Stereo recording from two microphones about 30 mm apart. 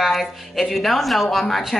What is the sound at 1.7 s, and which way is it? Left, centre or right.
Speech, centre.